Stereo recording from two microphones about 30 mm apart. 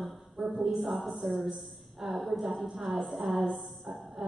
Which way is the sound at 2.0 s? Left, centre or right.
Right.